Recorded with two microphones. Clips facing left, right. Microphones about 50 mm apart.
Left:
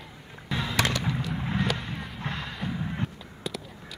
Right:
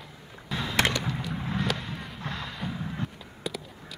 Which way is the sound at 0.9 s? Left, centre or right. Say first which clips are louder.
Left 1 dB; centre.